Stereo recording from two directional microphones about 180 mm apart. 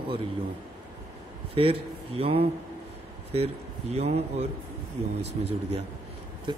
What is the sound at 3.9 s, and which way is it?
Speech, 40° right (ahead or behind).